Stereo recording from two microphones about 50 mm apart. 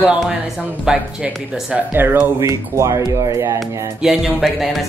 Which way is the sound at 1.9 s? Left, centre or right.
Right.